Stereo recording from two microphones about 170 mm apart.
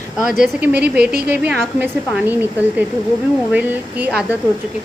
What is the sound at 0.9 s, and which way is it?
Speech, 70° right (ahead or behind).